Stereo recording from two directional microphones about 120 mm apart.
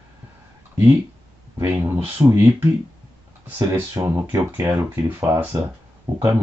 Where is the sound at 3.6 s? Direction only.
25° right (ahead or behind).